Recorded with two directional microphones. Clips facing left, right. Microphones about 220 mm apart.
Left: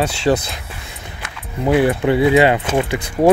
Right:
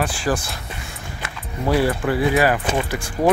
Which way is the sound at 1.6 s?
20° left (ahead or behind).